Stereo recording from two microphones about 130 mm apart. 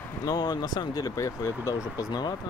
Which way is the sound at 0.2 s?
30° left (ahead or behind).